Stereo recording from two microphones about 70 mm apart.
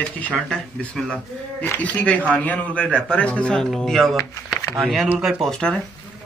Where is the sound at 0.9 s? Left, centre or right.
Centre.